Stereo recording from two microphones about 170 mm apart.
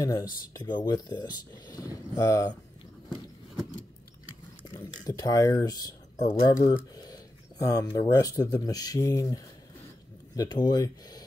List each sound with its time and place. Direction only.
0.0 s speech: 20° left (ahead or behind)
4.6 s speech: 20° left (ahead or behind)